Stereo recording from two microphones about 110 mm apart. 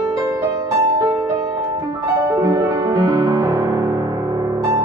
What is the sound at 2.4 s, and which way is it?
Music, 30° right (ahead or behind).